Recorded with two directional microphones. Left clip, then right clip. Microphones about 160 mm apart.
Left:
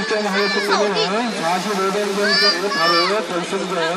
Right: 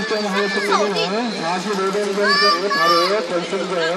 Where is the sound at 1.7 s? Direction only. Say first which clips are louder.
Even; 40° left (ahead or behind).